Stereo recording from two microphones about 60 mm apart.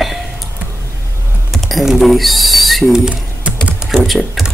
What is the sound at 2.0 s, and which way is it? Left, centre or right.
Speech, centre.